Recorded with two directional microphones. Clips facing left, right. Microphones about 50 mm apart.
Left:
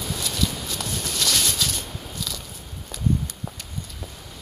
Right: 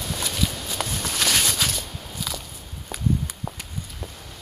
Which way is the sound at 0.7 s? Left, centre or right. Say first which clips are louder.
Right 4 dB; right.